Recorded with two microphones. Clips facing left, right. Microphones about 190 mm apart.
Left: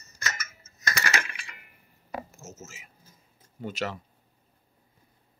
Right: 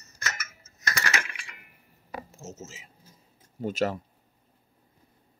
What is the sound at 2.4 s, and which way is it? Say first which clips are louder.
Speech: right 3 dB; 30° right (ahead or behind).